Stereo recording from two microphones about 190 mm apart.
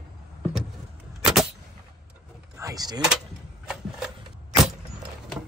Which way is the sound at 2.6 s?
20° right (ahead or behind).